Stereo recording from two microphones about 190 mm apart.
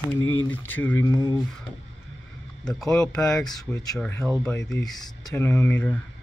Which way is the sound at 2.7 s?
5° left (ahead or behind).